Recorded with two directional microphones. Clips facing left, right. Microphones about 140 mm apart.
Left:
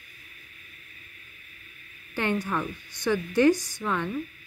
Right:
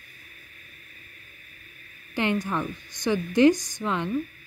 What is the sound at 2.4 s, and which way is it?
A woman's voice, 15° right (ahead or behind).